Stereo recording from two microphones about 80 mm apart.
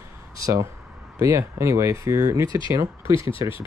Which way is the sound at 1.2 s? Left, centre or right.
Right.